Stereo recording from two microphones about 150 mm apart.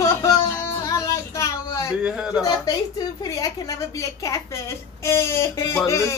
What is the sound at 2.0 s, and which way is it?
Speech, 5° right (ahead or behind).